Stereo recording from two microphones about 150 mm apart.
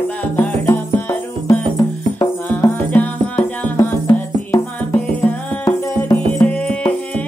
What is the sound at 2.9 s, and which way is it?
Music, 10° left (ahead or behind).